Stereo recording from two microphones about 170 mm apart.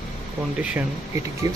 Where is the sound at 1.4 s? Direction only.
20° right (ahead or behind).